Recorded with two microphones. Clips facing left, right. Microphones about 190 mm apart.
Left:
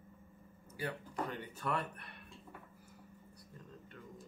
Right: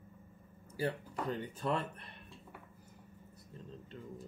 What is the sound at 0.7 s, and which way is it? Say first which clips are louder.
Speech: right 3 dB; 30° right (ahead or behind).